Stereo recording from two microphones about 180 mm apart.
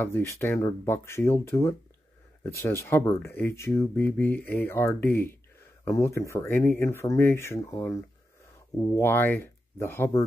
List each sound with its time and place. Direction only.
0.0 s speech: 15° left (ahead or behind)